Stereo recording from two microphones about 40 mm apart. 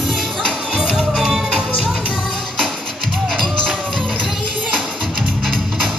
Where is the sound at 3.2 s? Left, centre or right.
Centre.